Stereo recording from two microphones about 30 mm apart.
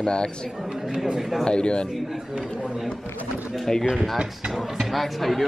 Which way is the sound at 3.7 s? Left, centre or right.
Centre.